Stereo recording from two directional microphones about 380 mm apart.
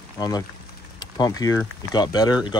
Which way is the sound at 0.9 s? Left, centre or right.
Centre.